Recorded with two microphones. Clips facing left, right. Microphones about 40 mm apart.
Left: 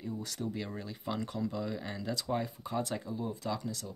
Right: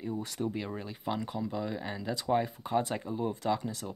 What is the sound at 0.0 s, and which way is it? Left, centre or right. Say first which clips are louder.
Speech: right 4 dB; right.